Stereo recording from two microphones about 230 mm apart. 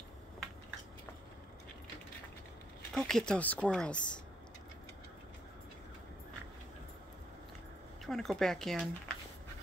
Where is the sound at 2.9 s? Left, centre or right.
Centre.